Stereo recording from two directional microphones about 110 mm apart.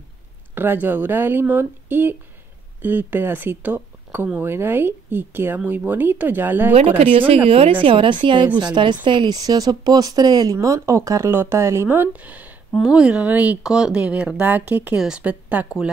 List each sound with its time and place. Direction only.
0.6 s speech: 20° right (ahead or behind)
6.7 s a woman's voice: 65° right (ahead or behind); by 15.9 s 10° right (ahead or behind)